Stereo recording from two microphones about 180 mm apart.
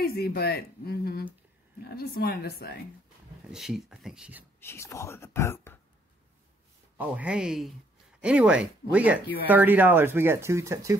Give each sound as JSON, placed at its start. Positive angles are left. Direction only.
{"t": 0.0, "sound": "speech", "side_deg": 60}
{"t": 3.5, "sound": "speech", "side_deg": 0}
{"t": 4.6, "sound": "speech", "side_deg": 15}
{"t": 7.0, "sound": "speech", "side_deg": -10}